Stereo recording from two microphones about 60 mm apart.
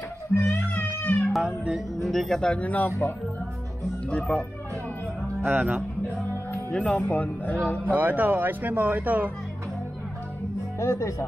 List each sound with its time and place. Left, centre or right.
0.3 s a child's voice: left
0.6 s music: left
1.3 s music: centre
2.0 s speech: centre
2.4 s speech: left
4.1 s speech: centre
5.4 s speech: right
6.7 s speech: centre
7.0 s speech: left
7.8 s speech: right
10.8 s speech: left